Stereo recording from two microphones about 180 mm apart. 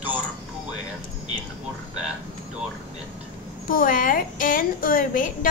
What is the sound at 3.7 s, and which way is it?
A woman's voice, 50° left (ahead or behind).